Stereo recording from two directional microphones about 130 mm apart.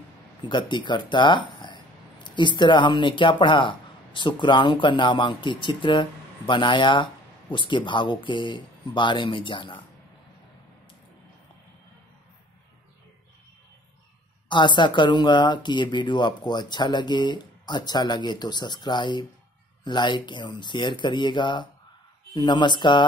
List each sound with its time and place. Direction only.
0.4 s speech: 35° left (ahead or behind)
14.5 s speech: 35° left (ahead or behind)